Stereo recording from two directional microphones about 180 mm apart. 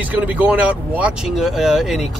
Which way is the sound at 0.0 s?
10° right (ahead or behind).